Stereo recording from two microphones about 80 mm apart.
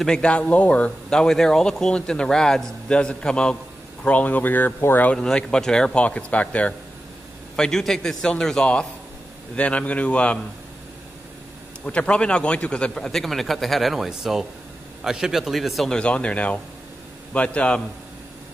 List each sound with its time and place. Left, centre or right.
0.0 s a man's voice: centre
1.1 s a man's voice: centre; by 5.1 s left
5.1 s a man's voice: centre
7.5 s a man's voice: centre
11.8 s a man's voice: centre
16.0 s a man's voice: centre